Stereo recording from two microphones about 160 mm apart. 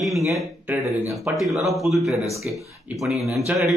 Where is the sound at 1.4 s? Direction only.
Centre (ahead or behind).